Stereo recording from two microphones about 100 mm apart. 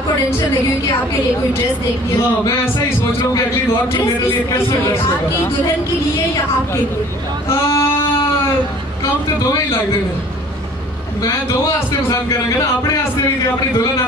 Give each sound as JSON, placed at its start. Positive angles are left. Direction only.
{"t": 4.0, "sound": "speech", "side_deg": 25}
{"t": 7.4, "sound": "female singing", "side_deg": 25}
{"t": 12.1, "sound": "speech", "side_deg": 30}